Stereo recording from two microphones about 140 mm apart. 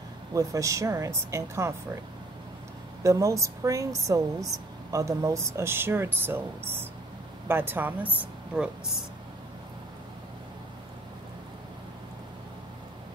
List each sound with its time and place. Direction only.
0.3 s speech: 25° right (ahead or behind)
3.0 s speech: 20° right (ahead or behind); by 8.9 s 5° right (ahead or behind)